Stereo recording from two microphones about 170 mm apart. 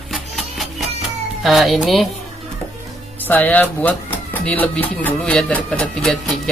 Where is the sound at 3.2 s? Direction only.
10° left (ahead or behind).